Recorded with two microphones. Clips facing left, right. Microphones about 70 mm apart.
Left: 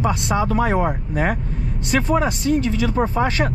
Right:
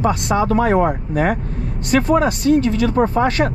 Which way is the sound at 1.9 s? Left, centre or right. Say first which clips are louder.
Right 4 dB; right.